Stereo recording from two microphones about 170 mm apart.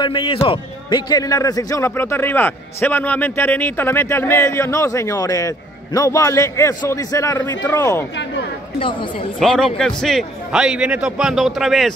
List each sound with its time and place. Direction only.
0.0 s a man's voice: 30° left (ahead or behind)
9.4 s a man's voice: 5° left (ahead or behind)